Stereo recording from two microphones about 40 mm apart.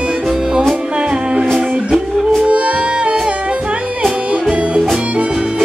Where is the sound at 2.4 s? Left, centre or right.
Right.